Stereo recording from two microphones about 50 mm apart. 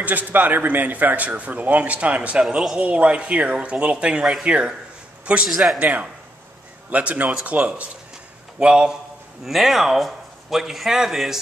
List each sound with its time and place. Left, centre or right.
0.0 s a man's voice: right
4.2 s speech: centre
5.5 s a man's voice: centre
5.8 s a man's voice: right
8.5 s speech: centre
9.4 s a man's voice: centre